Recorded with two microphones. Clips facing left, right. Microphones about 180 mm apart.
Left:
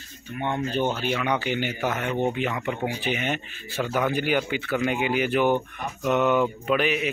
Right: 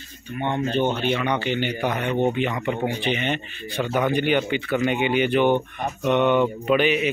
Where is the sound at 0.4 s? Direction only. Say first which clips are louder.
Right 3 dB; 5° left (ahead or behind).